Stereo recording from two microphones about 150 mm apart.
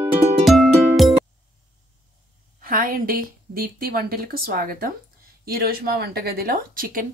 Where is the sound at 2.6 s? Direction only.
70° right (ahead or behind).